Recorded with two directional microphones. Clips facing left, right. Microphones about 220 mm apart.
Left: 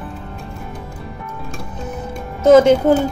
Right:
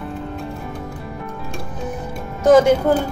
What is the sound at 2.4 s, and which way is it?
Speech, 25° left (ahead or behind).